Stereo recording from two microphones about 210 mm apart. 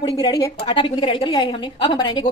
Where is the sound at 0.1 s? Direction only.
15° left (ahead or behind).